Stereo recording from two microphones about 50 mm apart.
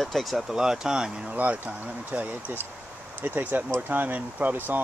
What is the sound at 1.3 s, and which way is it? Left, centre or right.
Speech, right.